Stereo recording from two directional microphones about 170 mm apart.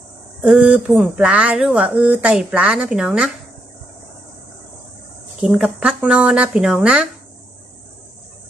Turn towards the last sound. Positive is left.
turn(degrees=-5)  # may be behind; listen again after turning